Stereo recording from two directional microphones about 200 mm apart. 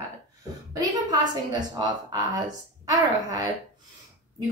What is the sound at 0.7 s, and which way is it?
A woman's voice, 20° right (ahead or behind).